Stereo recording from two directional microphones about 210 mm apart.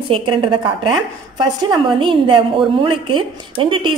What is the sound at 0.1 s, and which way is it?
A woman's voice, 25° right (ahead or behind).